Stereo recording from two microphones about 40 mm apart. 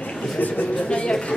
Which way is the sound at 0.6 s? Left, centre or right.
Left.